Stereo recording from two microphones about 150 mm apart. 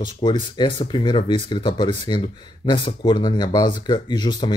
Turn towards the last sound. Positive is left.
turn(degrees=30)  # may be behind; listen again after turning